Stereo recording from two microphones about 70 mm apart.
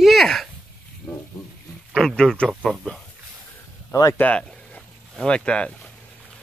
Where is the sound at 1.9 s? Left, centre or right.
Centre.